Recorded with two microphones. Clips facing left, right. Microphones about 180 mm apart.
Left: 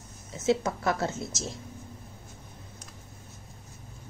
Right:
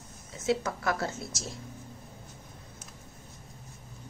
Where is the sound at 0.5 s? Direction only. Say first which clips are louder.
Left 3 dB; 25° left (ahead or behind).